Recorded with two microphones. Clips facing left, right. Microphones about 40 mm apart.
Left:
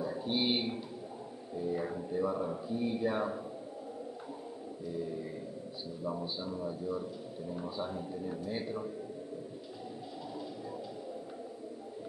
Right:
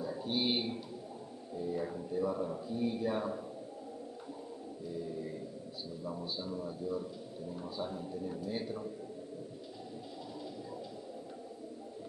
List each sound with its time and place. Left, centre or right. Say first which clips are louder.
0.0 s a sound: left 2 dB; centre
1.6 s speech: left 2 dB; centre
4.8 s a man's voice: left 2 dB; centre